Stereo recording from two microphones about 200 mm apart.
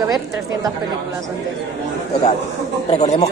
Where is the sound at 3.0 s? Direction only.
35° left (ahead or behind).